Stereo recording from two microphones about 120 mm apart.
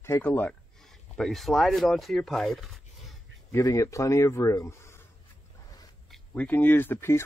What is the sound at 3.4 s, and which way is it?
Speech, 25° left (ahead or behind).